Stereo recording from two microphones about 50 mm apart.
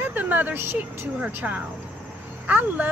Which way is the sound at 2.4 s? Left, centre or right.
Right.